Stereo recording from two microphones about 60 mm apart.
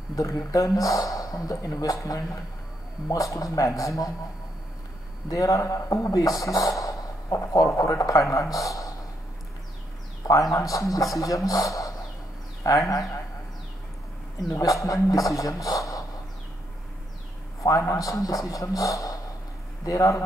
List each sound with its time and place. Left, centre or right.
0.1 s a man's voice: left
3.1 s a man's voice: left
5.3 s a man's voice: left
8.5 s a sound: left
10.2 s a man's voice: left
14.5 s a man's voice: left
17.6 s a man's voice: left